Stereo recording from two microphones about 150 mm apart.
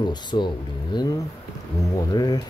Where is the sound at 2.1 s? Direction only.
25° left (ahead or behind).